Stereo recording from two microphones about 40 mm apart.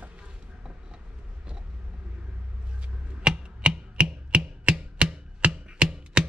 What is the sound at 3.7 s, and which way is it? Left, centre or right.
Chopping, right.